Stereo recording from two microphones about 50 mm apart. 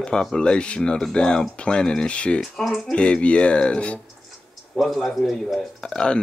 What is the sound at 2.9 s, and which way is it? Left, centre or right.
Speech, left.